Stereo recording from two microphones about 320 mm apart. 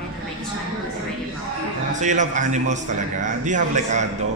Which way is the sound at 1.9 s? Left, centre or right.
Right.